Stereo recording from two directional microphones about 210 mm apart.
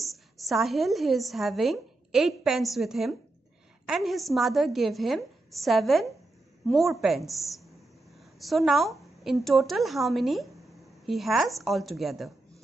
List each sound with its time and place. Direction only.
0.0 s a woman's voice: centre (ahead or behind)